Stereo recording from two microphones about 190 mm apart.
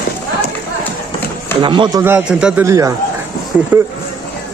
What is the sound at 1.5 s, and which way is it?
Speech, 25° right (ahead or behind).